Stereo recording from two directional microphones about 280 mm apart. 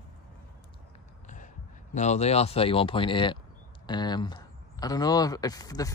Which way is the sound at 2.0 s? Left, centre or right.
Left.